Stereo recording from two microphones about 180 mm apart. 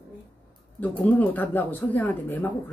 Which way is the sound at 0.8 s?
10° left (ahead or behind).